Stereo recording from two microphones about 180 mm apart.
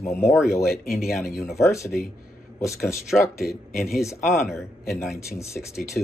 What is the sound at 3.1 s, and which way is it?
Speech, 5° left (ahead or behind).